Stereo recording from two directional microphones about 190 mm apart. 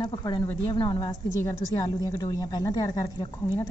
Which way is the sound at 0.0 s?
20° left (ahead or behind).